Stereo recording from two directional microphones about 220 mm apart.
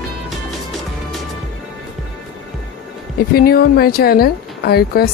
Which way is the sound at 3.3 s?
45° left (ahead or behind).